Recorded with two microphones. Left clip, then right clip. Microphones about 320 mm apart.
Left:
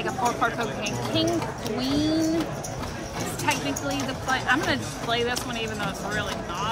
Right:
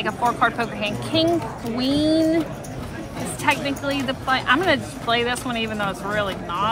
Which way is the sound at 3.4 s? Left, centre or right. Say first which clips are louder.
Right 6 dB; right.